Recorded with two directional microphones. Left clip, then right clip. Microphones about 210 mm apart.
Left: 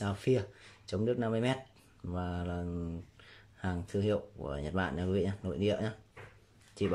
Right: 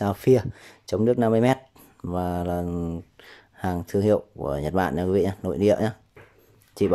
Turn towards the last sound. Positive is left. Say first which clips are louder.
# right 11 dB
turn(degrees=-25)  # may be behind; listen again after turning